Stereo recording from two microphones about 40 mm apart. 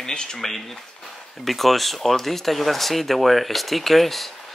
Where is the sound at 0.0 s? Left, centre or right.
Centre.